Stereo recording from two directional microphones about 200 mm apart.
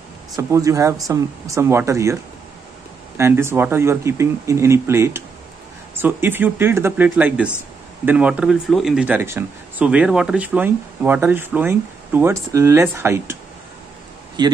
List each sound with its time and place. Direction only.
0.4 s speech: 15° right (ahead or behind)
3.2 s speech: 15° right (ahead or behind)
14.4 s a man's voice: 20° right (ahead or behind)